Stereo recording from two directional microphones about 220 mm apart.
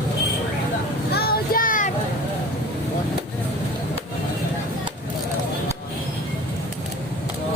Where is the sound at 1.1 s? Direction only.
40° left (ahead or behind).